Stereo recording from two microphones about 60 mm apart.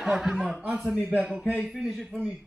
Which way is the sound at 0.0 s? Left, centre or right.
Centre.